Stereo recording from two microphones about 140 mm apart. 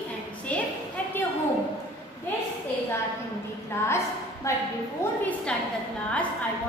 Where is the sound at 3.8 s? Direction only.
20° left (ahead or behind).